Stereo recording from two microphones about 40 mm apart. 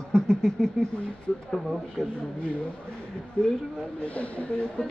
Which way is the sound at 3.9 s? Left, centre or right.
Left.